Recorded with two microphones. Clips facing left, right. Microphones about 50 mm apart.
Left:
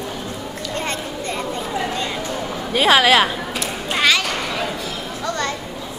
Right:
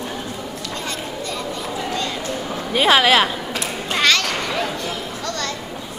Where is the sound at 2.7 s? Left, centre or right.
Centre.